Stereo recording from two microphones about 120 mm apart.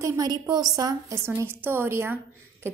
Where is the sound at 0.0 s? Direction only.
30° right (ahead or behind).